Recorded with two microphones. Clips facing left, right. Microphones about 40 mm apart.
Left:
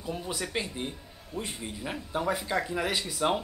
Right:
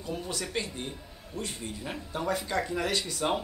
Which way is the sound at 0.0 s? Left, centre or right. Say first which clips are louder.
Left 1 dB; centre.